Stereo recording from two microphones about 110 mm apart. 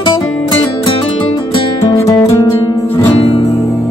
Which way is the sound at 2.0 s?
30° left (ahead or behind).